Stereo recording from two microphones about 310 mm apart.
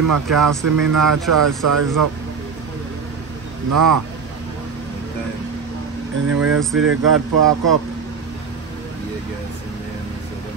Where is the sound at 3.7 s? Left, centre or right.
Right.